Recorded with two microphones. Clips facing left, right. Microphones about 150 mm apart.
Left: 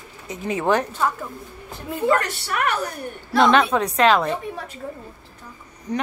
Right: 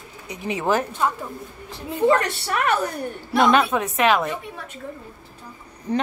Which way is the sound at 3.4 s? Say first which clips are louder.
Left 1 dB; 10° right (ahead or behind).